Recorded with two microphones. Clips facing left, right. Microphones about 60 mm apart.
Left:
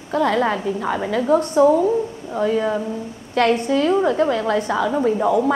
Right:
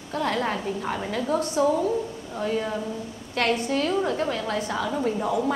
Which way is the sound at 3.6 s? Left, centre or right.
Left.